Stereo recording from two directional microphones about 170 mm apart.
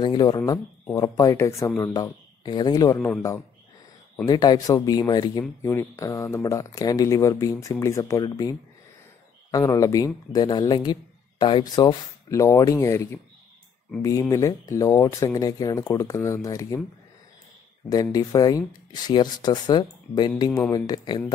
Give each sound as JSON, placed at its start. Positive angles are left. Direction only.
{"t": 0.0, "sound": "a man's voice", "side_deg": 25}
{"t": 14.3, "sound": "speech", "side_deg": 20}
{"t": 17.8, "sound": "speech", "side_deg": 20}